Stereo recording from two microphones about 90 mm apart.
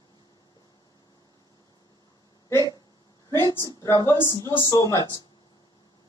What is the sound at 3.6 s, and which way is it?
Speech, 40° left (ahead or behind).